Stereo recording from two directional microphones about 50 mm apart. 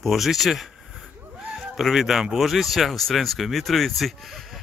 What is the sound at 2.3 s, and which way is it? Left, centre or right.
Speech, centre.